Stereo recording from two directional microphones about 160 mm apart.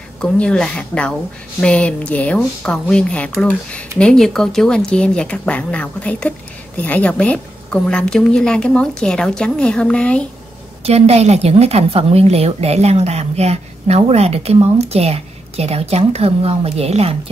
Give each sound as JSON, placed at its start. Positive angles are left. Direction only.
{"t": 0.2, "sound": "a woman's voice", "side_deg": 5}
{"t": 10.8, "sound": "a woman's voice", "side_deg": -40}